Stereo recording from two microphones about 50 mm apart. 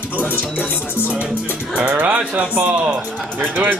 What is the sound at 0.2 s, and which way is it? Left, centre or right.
Speech, left.